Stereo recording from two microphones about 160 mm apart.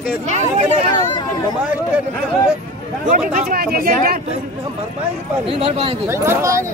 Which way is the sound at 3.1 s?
60° right (ahead or behind).